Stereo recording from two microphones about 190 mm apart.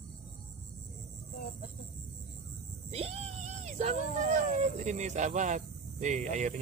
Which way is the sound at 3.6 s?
35° right (ahead or behind).